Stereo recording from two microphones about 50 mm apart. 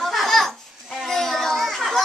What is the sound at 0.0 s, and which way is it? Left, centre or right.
Children playing, centre.